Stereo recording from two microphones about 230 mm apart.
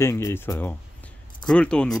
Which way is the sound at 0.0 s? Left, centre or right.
Centre.